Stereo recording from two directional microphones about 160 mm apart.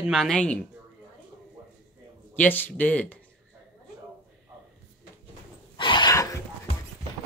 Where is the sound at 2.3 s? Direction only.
10° left (ahead or behind).